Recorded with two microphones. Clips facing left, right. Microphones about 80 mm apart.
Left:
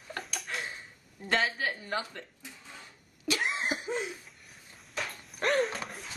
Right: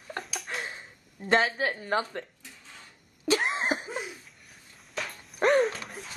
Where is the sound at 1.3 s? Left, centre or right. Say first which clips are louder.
Right 4 dB; right.